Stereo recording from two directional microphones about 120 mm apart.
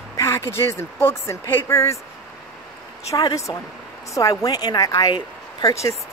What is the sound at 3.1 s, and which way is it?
A woman's voice, 30° left (ahead or behind).